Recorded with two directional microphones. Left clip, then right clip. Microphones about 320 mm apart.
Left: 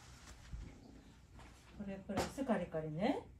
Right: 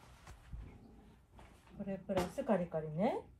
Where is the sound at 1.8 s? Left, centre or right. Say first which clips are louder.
Right 5 dB; centre.